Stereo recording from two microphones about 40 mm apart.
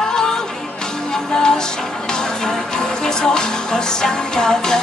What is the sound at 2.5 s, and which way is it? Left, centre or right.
Music, centre.